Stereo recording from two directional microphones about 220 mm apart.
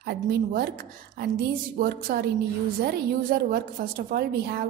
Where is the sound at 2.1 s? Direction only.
40° right (ahead or behind).